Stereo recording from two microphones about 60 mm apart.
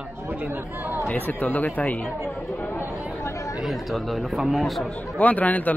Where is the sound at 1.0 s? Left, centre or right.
Left.